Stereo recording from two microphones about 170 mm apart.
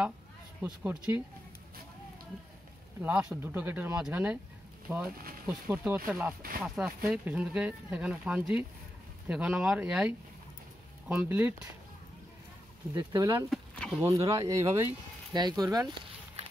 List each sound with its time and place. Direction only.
0.6 s speech: 10° right (ahead or behind)
3.0 s speech: 5° right (ahead or behind)
12.9 s speech: 20° right (ahead or behind)
13.5 s a sound: centre (ahead or behind)
14.0 s speech: 20° right (ahead or behind)